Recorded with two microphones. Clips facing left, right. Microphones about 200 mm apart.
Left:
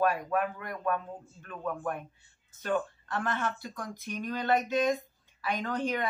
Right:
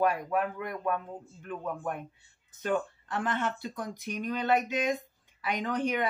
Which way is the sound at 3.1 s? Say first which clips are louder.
Right 2 dB; 20° right (ahead or behind).